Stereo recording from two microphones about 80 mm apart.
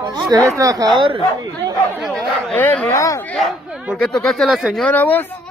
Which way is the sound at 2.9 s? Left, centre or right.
Left.